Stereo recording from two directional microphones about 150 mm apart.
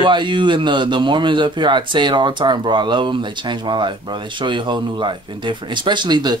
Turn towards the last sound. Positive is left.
turn(degrees=-30)  # may be behind; listen again after turning